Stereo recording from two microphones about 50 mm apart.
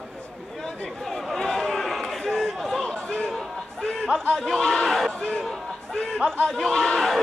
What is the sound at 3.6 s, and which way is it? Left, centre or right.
Chatter, centre.